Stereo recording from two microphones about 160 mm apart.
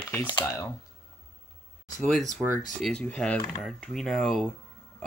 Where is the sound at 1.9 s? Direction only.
Centre (ahead or behind).